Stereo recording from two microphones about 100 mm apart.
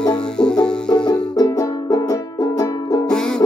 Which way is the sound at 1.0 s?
40° left (ahead or behind).